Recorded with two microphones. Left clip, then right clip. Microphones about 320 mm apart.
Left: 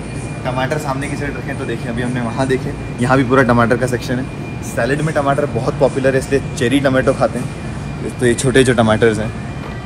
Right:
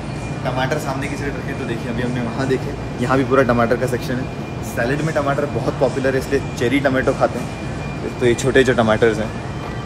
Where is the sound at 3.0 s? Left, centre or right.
Centre.